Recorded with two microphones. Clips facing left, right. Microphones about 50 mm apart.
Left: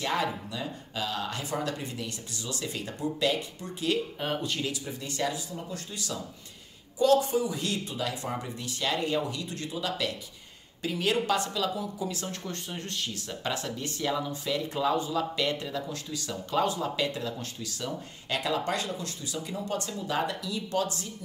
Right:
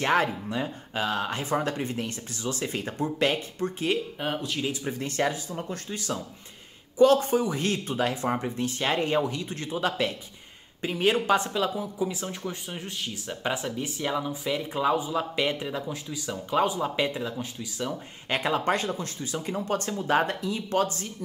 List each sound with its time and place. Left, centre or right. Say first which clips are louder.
0.0 s speech: right 5 dB; right
4.4 s speech: right 1 dB; centre
4.8 s speech: right 5 dB; right; by 17.9 s centre
18.3 s speech: right 4 dB; right